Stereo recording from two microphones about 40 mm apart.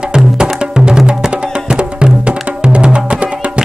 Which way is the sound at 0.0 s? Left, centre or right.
Centre.